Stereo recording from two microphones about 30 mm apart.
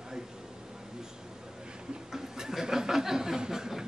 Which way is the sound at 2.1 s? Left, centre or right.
Centre.